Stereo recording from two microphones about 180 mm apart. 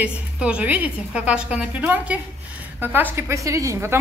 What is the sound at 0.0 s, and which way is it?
A woman's voice, 5° right (ahead or behind).